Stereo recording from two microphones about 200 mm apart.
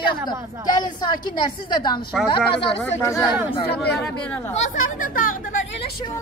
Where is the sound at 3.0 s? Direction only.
15° left (ahead or behind).